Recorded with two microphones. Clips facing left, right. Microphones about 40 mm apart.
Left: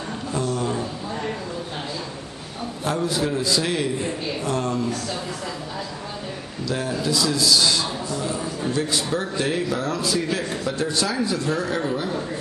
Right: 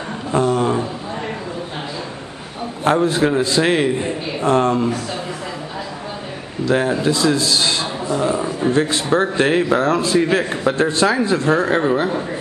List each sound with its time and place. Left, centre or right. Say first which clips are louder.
0.3 s a sound: right 9 dB; right
2.8 s a man's voice: right 8 dB; right
6.6 s a man's voice: right 9 dB; right
8.7 s a man's voice: right 7 dB; right